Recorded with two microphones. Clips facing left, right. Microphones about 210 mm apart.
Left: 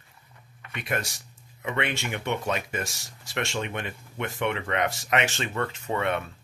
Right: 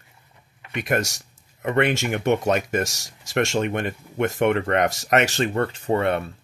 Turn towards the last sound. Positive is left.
turn(degrees=-35)  # may be behind; listen again after turning